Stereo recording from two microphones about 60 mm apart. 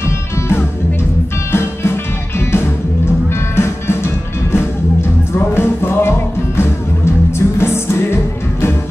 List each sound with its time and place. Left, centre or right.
1.5 s music: left